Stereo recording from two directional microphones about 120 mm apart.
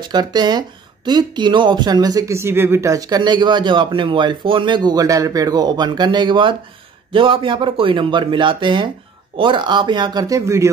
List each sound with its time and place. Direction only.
0.0 s speech: 35° right (ahead or behind)